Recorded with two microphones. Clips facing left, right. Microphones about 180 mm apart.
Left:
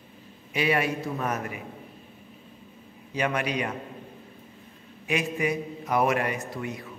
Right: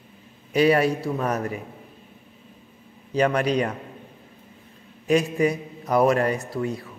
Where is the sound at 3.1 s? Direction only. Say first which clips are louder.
Right 6 dB; 35° right (ahead or behind).